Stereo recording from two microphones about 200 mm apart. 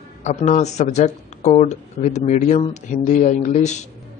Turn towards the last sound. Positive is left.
turn(degrees=35)  # may be behind; listen again after turning